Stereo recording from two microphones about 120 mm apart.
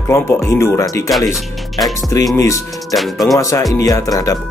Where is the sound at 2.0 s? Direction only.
30° left (ahead or behind).